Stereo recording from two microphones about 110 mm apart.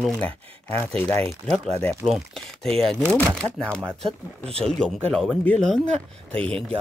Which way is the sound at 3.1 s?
10° left (ahead or behind).